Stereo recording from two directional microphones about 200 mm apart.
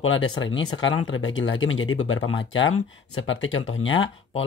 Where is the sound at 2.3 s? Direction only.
75° left (ahead or behind).